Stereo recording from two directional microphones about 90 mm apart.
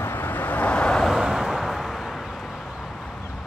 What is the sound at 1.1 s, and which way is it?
Vehicle, 5° right (ahead or behind).